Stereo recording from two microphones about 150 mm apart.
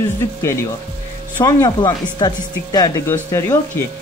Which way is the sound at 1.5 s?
25° left (ahead or behind).